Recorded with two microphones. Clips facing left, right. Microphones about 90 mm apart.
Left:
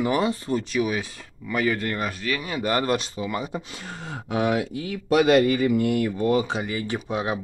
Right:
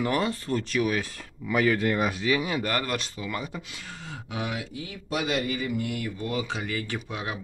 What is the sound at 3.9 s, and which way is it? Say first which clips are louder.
Speech: left 9 dB; 45° left (ahead or behind).